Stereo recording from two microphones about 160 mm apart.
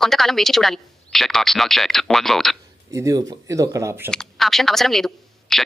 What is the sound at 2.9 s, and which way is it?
Speech, 20° right (ahead or behind).